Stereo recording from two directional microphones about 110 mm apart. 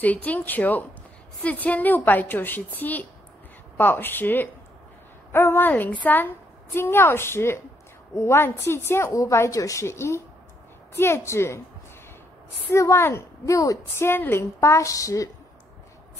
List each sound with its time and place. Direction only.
0.0 s a woman's voice: 15° left (ahead or behind)
12.7 s a woman's voice: 25° left (ahead or behind)